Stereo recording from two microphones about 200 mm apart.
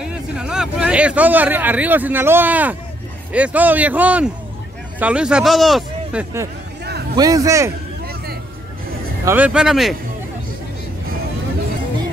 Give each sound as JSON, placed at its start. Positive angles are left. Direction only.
{"t": 0.0, "sound": "speech", "side_deg": -5}
{"t": 7.2, "sound": "speech", "side_deg": -15}
{"t": 9.2, "sound": "speech", "side_deg": -10}